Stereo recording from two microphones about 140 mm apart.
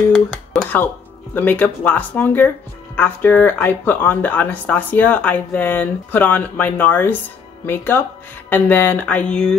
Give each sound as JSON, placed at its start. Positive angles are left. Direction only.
{"t": 0.5, "sound": "speech", "side_deg": 10}